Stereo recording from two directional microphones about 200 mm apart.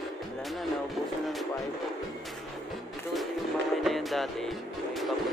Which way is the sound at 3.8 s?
Centre (ahead or behind).